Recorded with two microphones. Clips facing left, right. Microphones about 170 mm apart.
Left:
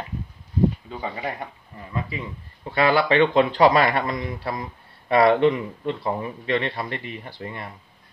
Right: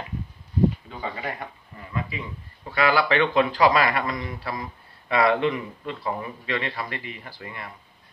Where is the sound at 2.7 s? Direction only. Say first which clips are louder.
Left 2 dB; 25° left (ahead or behind).